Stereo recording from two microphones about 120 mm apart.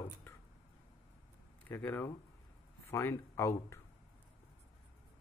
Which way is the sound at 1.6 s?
15° left (ahead or behind).